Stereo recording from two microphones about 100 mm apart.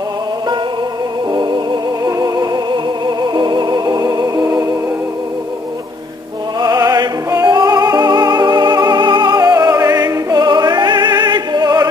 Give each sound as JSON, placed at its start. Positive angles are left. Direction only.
{"t": 1.3, "sound": "music", "side_deg": -50}
{"t": 2.0, "sound": "music", "side_deg": -40}
{"t": 6.6, "sound": "music", "side_deg": -40}